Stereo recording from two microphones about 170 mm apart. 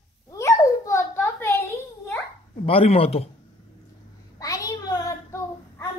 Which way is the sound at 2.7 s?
35° left (ahead or behind).